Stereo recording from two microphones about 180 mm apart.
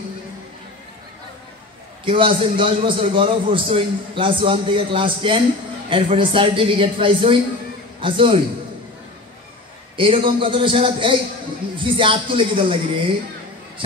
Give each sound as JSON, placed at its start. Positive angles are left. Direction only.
{"t": 2.0, "sound": "a man's voice", "side_deg": -30}
{"t": 9.9, "sound": "a man's voice", "side_deg": -30}